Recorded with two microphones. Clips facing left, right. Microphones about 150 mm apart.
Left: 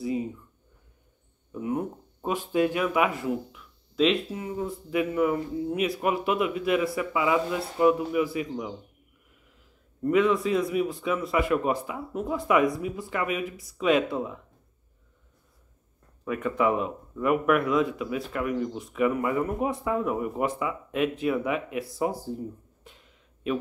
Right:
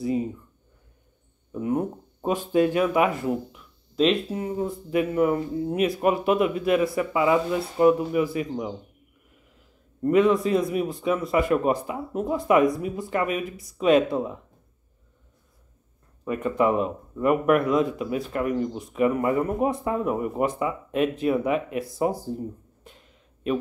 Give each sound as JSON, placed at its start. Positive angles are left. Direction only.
{"t": 1.5, "sound": "a sound", "side_deg": -35}
{"t": 3.9, "sound": "speech", "side_deg": -45}
{"t": 10.0, "sound": "speech", "side_deg": -40}
{"t": 16.3, "sound": "speech", "side_deg": -35}